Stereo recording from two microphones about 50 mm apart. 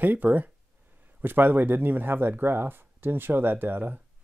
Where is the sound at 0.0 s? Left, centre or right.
Right.